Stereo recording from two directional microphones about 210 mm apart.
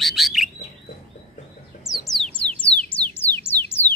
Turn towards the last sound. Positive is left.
turn(degrees=10)  # may be behind; listen again after turning